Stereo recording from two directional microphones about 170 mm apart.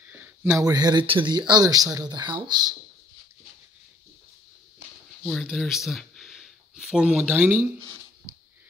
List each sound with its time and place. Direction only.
0.0 s speech: 10° right (ahead or behind)
5.2 s speech: centre (ahead or behind)